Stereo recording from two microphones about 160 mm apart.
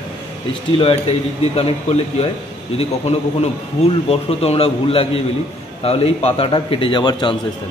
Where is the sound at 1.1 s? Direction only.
40° left (ahead or behind).